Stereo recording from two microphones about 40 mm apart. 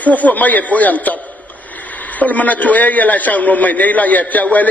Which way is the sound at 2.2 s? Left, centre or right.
Left.